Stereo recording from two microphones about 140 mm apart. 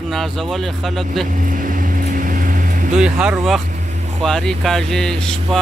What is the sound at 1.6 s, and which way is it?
Vehicle, 75° right (ahead or behind).